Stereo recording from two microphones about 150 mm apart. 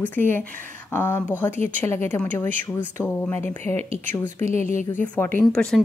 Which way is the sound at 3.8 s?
50° right (ahead or behind).